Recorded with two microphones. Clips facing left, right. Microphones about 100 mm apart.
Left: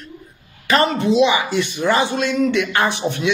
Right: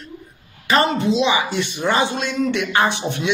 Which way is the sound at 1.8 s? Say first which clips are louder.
Left 1 dB; 30° right (ahead or behind).